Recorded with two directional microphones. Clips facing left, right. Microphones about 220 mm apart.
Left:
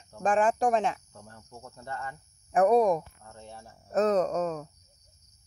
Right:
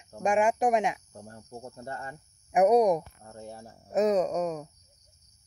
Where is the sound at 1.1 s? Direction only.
35° right (ahead or behind).